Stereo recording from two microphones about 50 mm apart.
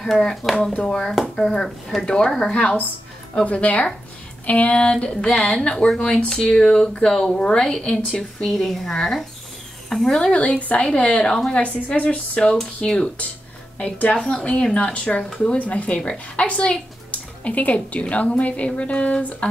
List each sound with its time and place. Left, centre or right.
0.0 s speech: centre
3.4 s a woman's voice: left
8.5 s a woman's voice: centre
15.5 s a woman's voice: left